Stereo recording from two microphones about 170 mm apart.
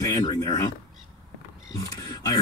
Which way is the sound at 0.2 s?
25° left (ahead or behind).